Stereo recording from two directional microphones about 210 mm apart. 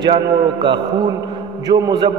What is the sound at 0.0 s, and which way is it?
A man's voice, 25° right (ahead or behind).